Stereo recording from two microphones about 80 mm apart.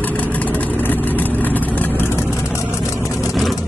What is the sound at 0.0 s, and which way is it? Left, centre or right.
Vehicle, centre.